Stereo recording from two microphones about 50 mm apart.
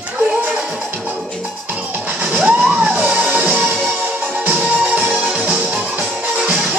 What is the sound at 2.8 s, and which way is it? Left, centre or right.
Music, right.